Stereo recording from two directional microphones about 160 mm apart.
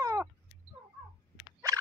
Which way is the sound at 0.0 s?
20° right (ahead or behind).